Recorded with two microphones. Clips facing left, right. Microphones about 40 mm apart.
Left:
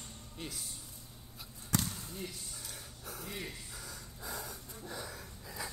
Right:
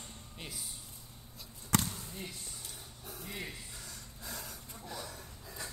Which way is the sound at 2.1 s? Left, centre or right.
Centre.